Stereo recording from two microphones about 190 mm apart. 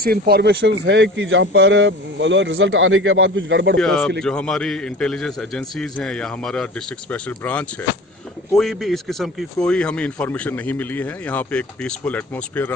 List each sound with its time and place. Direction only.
0.0 s speech: 55° right (ahead or behind); by 3.8 s 75° right (ahead or behind)
3.8 s a man's voice: 5° left (ahead or behind)